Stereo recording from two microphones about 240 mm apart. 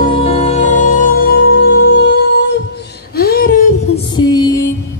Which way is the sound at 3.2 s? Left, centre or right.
Left.